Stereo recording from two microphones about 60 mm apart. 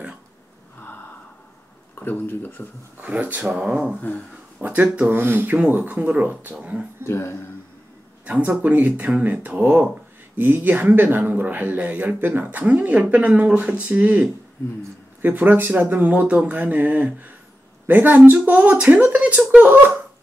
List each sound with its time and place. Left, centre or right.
2.0 s speech: left
3.0 s speech: right
3.4 s speech: centre
4.6 s speech: right
7.1 s speech: left
8.3 s speech: right
9.6 s speech: right